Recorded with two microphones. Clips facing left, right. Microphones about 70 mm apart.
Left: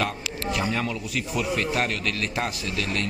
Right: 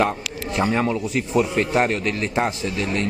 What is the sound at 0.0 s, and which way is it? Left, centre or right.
A man's voice, right.